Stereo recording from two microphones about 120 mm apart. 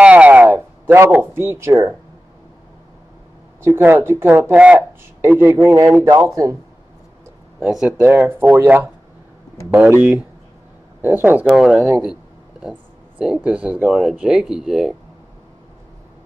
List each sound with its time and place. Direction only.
0.0 s a sound: 10° right (ahead or behind)
3.6 s speech: 20° right (ahead or behind)
7.6 s speech: 5° right (ahead or behind)
8.0 s speech: 20° right (ahead or behind)
11.4 s speech: 5° right (ahead or behind)
13.2 s speech: 10° right (ahead or behind)